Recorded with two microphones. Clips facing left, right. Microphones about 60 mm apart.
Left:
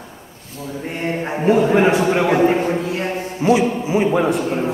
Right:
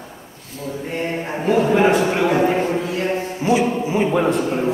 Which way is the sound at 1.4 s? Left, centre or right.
Left.